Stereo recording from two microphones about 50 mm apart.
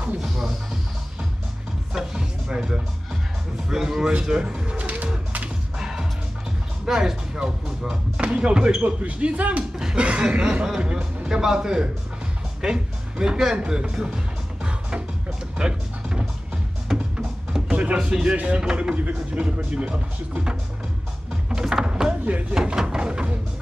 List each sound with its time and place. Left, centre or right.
2.0 s speech: centre
4.7 s pigeon: right
5.8 s music: centre
6.9 s speech: centre
13.6 s music: centre
16.9 s music: centre
17.5 s music: centre
17.9 s speech: centre
18.3 s speech: right
21.5 s music: centre
22.5 s speech: centre